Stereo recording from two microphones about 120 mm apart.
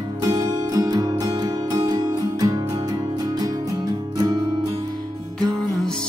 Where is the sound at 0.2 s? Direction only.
30° right (ahead or behind).